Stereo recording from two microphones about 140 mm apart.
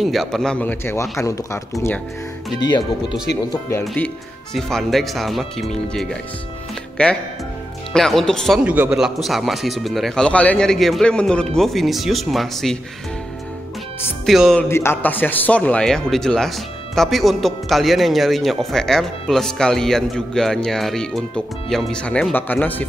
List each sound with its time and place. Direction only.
0.0 s a man's voice: centre (ahead or behind); by 2.0 s 20° left (ahead or behind)
2.6 s speech: 30° left (ahead or behind)
3.8 s a man's voice: 5° left (ahead or behind)
8.6 s a man's voice: 10° right (ahead or behind)
14.2 s a man's voice: centre (ahead or behind)
14.7 s a man's voice: 15° left (ahead or behind)